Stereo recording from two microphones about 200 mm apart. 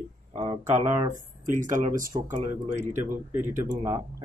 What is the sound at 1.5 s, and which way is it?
Speech, 40° right (ahead or behind).